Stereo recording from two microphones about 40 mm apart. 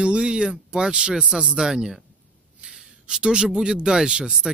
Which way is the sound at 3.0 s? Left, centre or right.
Right.